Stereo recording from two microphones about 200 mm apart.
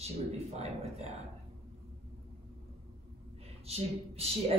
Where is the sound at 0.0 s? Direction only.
30° right (ahead or behind).